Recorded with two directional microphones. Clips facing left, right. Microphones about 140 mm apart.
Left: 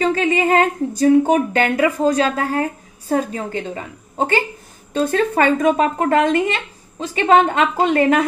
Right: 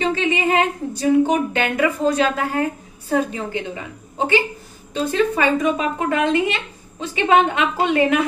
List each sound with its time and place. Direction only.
0.0 s speech: 45° left (ahead or behind)
4.9 s a woman's voice: 50° left (ahead or behind)